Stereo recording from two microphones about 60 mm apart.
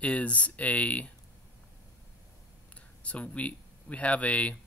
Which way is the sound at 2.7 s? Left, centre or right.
Left.